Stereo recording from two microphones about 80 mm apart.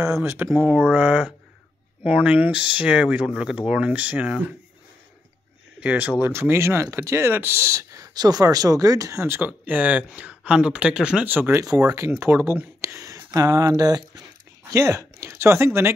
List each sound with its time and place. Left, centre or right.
0.0 s speech: right; by 4.6 s centre
5.8 s speech: centre
6.3 s speech: right
9.2 s speech: right; by 11.2 s centre
11.2 s speech: right
11.6 s speech: right
12.2 s speech: right
12.8 s a sound: right
13.3 s speech: right
14.7 s speech: right